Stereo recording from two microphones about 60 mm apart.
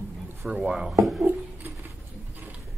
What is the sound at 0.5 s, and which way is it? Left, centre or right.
Speech, centre.